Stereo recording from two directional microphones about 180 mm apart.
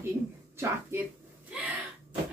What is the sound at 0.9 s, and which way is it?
Speech, 15° right (ahead or behind).